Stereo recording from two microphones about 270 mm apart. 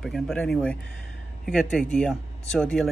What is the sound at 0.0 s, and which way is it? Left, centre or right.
Speech, centre.